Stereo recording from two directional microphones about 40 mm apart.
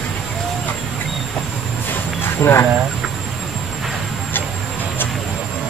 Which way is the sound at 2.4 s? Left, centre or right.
Left.